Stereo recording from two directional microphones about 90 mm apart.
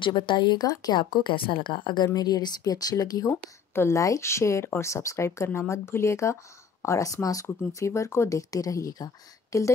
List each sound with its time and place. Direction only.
0.0 s speech: 60° left (ahead or behind)
2.1 s speech: 50° left (ahead or behind)
3.3 s speech: 30° left (ahead or behind)